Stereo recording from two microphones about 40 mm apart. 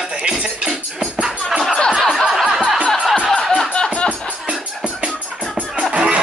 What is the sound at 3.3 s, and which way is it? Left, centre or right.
Music, centre.